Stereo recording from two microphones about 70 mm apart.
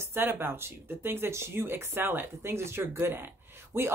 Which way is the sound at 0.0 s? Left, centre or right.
Right.